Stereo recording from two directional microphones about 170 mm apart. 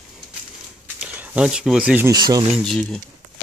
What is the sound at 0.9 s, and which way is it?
Speech, 10° right (ahead or behind).